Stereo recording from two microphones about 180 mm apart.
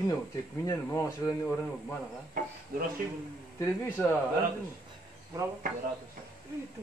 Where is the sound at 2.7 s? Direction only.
55° right (ahead or behind).